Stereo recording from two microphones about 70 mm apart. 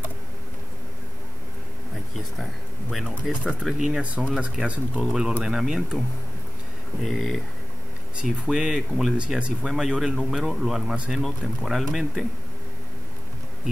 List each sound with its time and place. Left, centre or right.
2.1 s speech: centre
7.0 s speech: centre
8.2 s speech: centre